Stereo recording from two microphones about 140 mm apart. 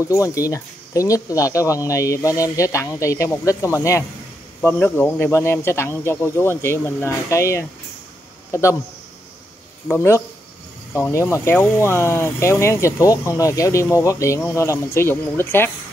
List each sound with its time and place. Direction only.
0.0 s speech: 25° left (ahead or behind)
9.8 s speech: 20° left (ahead or behind)